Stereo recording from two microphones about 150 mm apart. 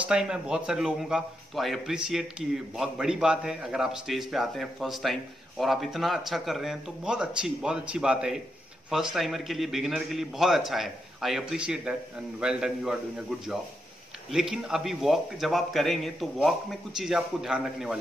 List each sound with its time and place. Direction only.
0.1 s a man's voice: 5° right (ahead or behind)
14.3 s a man's voice: 5° right (ahead or behind)